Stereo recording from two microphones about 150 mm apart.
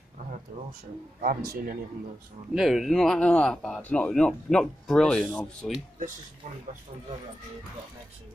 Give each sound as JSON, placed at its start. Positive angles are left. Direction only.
{"t": 0.5, "sound": "speech", "side_deg": -55}
{"t": 1.2, "sound": "speech", "side_deg": -75}
{"t": 2.5, "sound": "speech", "side_deg": 0}